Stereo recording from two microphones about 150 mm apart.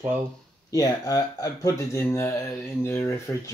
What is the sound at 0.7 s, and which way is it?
Speech, 25° left (ahead or behind).